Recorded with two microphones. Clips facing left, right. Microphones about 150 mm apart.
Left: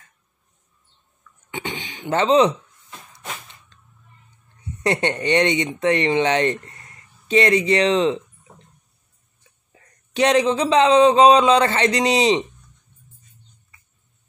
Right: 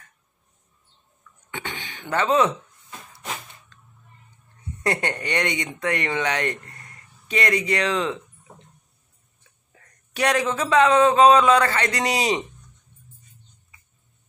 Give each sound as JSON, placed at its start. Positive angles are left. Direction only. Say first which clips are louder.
{"t": 1.5, "sound": "speech", "louder": "left 4 dB", "side_deg": 20}
{"t": 4.8, "sound": "speech", "louder": "left 5 dB", "side_deg": 25}
{"t": 9.7, "sound": "speech", "louder": "left 2 dB", "side_deg": 25}